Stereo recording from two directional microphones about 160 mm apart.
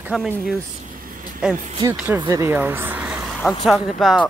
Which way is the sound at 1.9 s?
10° right (ahead or behind).